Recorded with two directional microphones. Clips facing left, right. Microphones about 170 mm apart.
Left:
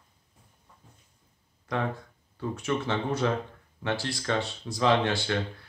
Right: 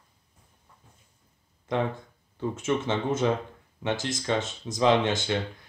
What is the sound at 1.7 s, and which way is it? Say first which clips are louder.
Speech: right 3 dB; 25° right (ahead or behind).